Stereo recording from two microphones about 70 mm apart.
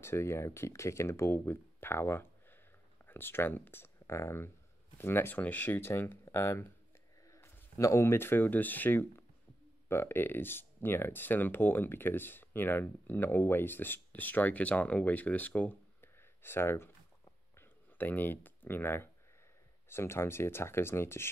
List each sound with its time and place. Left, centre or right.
0.0 s speech: left
5.4 s speech: left
7.2 s a sound: left
7.8 s speech: left
16.2 s a sound: left
19.9 s speech: left